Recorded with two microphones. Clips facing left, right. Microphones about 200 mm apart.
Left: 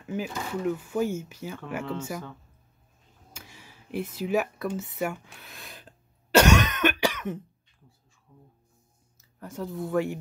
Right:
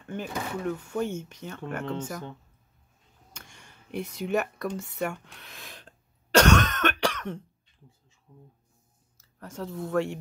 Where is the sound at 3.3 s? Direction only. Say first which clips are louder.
Left 2 dB; 5° left (ahead or behind).